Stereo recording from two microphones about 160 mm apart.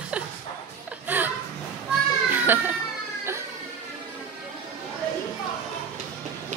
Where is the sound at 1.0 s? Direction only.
10° right (ahead or behind).